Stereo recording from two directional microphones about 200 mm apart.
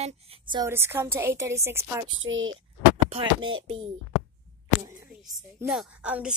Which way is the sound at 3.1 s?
25° right (ahead or behind).